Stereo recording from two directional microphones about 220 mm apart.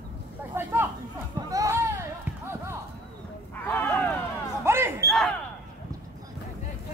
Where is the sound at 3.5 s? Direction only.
10° left (ahead or behind).